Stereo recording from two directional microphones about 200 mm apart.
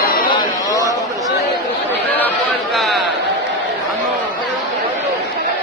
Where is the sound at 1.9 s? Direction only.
10° left (ahead or behind).